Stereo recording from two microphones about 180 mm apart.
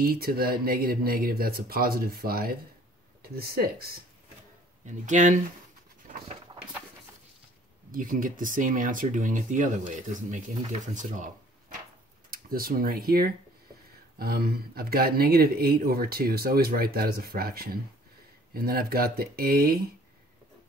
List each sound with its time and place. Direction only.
0.0 s speech: 55° right (ahead or behind)
4.8 s speech: 45° right (ahead or behind)
7.9 s speech: 50° right (ahead or behind)
12.3 s speech: 55° right (ahead or behind)